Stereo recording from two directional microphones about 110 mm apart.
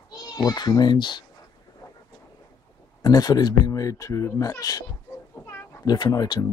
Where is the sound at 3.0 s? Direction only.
35° left (ahead or behind).